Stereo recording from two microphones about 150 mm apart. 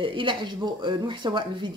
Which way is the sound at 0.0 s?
35° right (ahead or behind).